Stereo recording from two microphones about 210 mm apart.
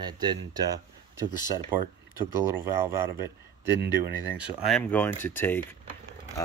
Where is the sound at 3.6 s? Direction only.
50° right (ahead or behind).